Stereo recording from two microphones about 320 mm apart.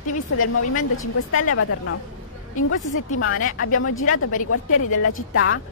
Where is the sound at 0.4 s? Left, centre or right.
Left.